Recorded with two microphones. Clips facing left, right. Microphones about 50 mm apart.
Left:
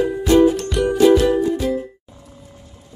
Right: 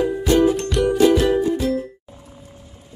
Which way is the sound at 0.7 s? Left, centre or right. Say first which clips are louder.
Even; centre.